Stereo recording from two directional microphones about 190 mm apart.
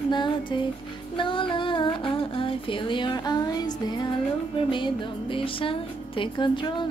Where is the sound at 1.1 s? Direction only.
25° left (ahead or behind).